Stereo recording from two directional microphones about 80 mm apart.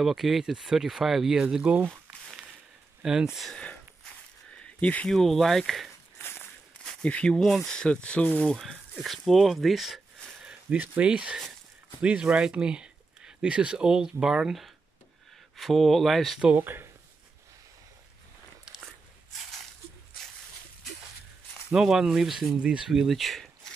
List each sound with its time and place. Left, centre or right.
0.0 s speech: centre
1.6 s speech: centre
1.9 s crumpling: centre
3.0 s speech: centre
3.4 s a sound: centre
5.1 s speech: centre
6.1 s walk: left
6.8 s speech: centre
8.5 s speech: centre
10.5 s speech: centre
16.5 s speech: right
18.7 s biting: centre
21.7 s speech: centre